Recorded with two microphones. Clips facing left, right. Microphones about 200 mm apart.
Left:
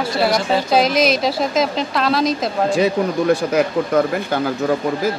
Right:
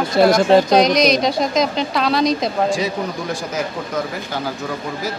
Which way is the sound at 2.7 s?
60° left (ahead or behind).